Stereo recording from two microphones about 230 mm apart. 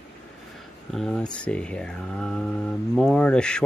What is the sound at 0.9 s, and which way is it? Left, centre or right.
Speech, centre.